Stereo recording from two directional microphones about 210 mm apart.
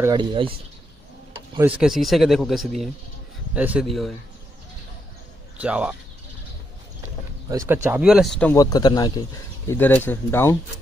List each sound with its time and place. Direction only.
0.0 s speech: 20° right (ahead or behind)
1.8 s speech: centre (ahead or behind)
5.6 s speech: 5° right (ahead or behind)
7.4 s speech: 15° right (ahead or behind); by 8.5 s 5° left (ahead or behind)
8.5 s speech: 20° left (ahead or behind)
9.7 s speech: 10° left (ahead or behind)